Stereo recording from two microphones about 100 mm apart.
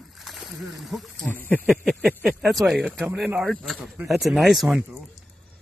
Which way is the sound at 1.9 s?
10° left (ahead or behind).